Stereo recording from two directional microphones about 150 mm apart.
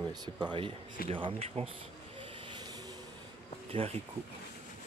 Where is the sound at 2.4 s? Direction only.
30° right (ahead or behind).